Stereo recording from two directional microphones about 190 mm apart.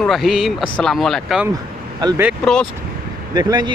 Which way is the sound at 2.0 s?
20° right (ahead or behind).